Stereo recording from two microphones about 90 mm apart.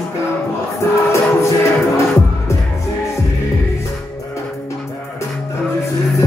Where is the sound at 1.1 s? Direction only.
35° left (ahead or behind).